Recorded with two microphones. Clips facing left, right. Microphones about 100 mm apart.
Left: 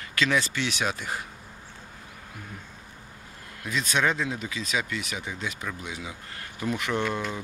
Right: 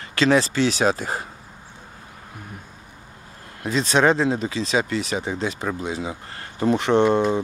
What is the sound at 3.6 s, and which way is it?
Speech, 30° right (ahead or behind).